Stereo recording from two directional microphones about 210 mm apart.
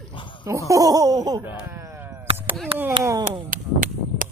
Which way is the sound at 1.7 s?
15° right (ahead or behind).